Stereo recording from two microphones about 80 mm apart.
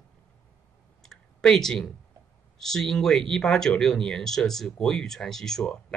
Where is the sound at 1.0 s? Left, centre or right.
Centre.